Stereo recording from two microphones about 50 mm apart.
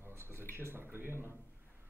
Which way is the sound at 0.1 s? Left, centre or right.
Right.